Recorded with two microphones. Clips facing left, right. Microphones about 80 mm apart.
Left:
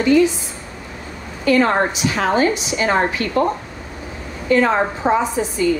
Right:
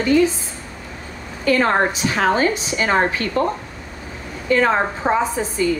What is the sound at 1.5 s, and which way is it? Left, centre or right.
A woman's voice, right.